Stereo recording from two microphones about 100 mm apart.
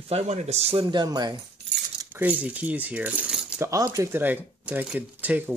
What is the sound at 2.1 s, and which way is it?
Speech, 15° right (ahead or behind).